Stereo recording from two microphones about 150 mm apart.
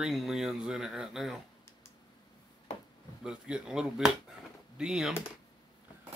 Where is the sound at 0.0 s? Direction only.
Centre (ahead or behind).